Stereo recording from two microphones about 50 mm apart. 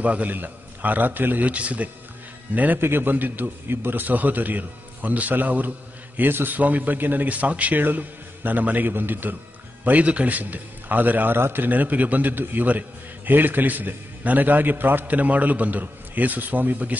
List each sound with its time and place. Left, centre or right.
0.0 s a man's voice: right
2.8 s a man's voice: right
9.8 s a man's voice: right